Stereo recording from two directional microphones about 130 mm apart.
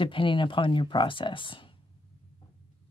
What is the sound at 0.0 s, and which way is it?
A woman's voice, 40° left (ahead or behind).